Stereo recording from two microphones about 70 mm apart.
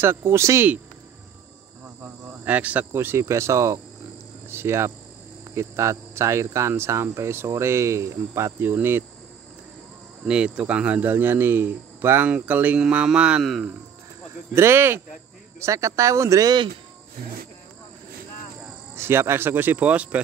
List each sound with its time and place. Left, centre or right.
0.0 s cricket: right
2.4 s speech: right
2.9 s speech: right
4.5 s cricket: right
5.5 s speech: right
6.7 s cricket: right
10.2 s speech: centre
12.8 s mantra: centre
13.4 s speech: centre
14.5 s cricket: right
15.6 s speech: right
18.9 s cricket: right